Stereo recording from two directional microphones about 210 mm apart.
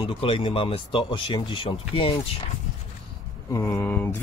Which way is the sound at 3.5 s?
15° left (ahead or behind).